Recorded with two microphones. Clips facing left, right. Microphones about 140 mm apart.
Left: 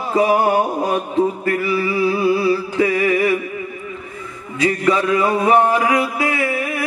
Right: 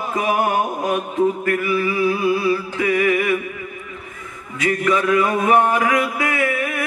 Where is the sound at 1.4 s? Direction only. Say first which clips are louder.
Left 1 dB; 30° left (ahead or behind).